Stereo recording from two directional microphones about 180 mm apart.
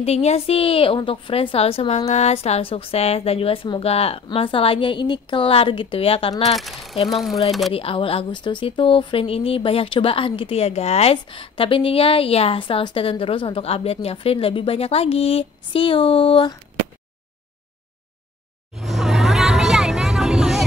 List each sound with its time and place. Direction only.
0.0 s speech: 35° left (ahead or behind)
6.5 s speech: centre (ahead or behind)
7.7 s speech: 30° left (ahead or behind)
18.8 s a sound: centre (ahead or behind)